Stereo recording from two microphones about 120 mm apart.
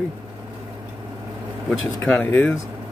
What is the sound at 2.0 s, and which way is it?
Speech, 10° left (ahead or behind).